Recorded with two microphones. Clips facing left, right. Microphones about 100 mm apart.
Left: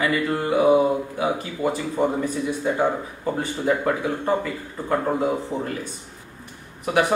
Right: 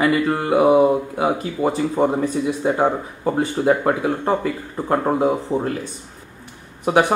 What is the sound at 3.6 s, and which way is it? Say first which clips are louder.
Speech: right 3 dB; 35° right (ahead or behind).